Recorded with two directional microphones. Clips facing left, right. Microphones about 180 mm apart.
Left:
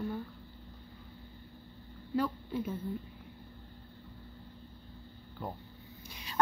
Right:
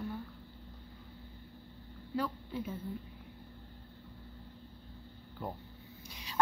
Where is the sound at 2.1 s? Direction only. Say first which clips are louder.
Left 4 dB; 50° left (ahead or behind).